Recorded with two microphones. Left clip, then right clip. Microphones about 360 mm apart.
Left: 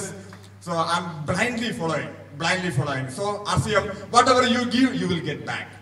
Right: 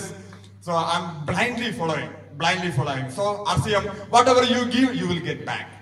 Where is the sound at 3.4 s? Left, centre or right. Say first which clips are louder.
Even; centre.